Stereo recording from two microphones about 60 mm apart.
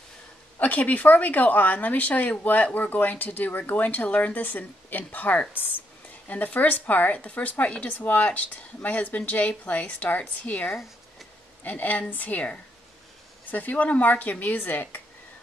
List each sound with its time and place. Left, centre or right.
0.6 s speech: left